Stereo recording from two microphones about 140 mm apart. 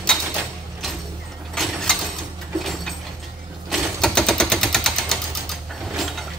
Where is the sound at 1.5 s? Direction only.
5° left (ahead or behind).